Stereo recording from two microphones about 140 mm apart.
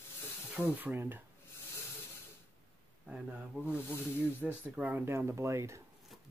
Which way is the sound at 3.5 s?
15° right (ahead or behind).